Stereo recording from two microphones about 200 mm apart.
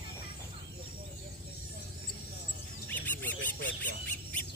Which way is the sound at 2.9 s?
10° left (ahead or behind).